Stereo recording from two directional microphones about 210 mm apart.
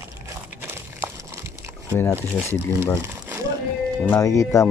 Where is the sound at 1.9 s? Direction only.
10° left (ahead or behind).